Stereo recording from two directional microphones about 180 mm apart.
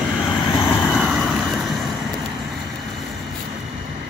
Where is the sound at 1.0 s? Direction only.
Centre (ahead or behind).